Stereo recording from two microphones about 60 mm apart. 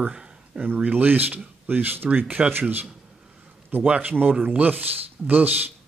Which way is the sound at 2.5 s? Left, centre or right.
Right.